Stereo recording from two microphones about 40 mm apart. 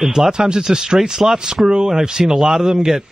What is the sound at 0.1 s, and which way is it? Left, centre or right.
Speech, centre.